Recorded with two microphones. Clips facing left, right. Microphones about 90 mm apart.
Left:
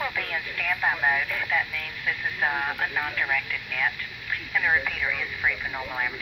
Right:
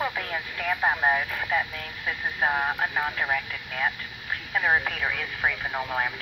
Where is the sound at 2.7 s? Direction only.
25° right (ahead or behind).